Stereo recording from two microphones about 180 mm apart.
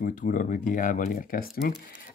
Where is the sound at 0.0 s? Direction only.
45° left (ahead or behind).